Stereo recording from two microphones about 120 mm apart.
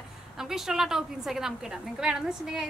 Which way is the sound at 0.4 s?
5° right (ahead or behind).